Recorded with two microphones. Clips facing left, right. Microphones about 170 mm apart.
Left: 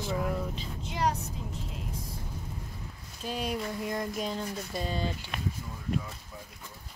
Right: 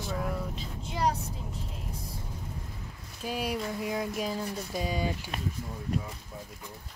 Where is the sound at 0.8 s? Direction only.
35° right (ahead or behind).